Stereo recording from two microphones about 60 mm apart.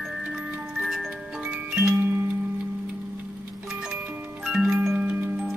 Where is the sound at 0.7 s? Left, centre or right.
Centre.